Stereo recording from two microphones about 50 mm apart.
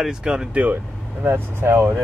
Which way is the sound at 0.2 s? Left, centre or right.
Centre.